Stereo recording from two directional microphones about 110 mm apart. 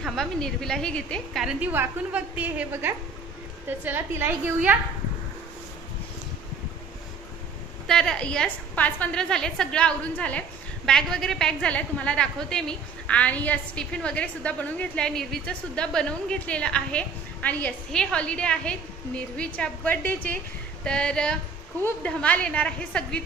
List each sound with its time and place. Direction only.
0.0 s a woman's voice: 5° left (ahead or behind)
1.4 s a woman's voice: 5° right (ahead or behind)
7.8 s a woman's voice: 5° left (ahead or behind)